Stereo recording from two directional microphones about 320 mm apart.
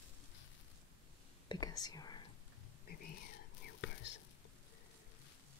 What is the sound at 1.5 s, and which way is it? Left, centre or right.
Speech, centre.